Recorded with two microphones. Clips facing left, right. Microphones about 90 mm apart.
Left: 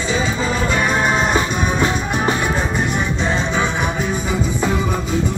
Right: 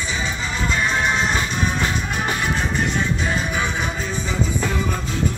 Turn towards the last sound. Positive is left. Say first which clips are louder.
# left 4 dB
turn(degrees=25)  # may be behind; listen again after turning